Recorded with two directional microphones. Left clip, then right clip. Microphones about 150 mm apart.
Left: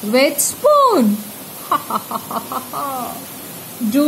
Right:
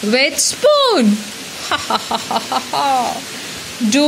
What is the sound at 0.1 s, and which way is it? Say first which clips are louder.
Speech: even; 15° right (ahead or behind).